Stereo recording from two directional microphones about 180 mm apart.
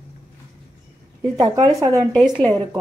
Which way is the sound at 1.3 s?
20° right (ahead or behind).